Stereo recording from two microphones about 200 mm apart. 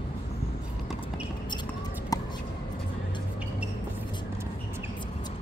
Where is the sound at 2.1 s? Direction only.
15° left (ahead or behind).